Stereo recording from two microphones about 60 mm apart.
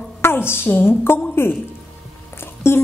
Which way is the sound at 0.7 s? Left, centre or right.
Left.